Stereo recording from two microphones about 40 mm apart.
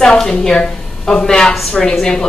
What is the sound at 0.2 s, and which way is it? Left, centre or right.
A woman's voice, centre.